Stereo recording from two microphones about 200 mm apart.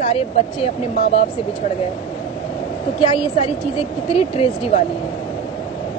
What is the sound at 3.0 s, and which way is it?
Speech, 25° left (ahead or behind).